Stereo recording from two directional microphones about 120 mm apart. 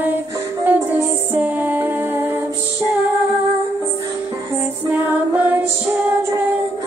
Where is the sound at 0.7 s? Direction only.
15° right (ahead or behind).